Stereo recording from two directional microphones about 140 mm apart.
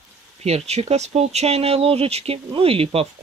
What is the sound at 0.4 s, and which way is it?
Speech, 50° right (ahead or behind).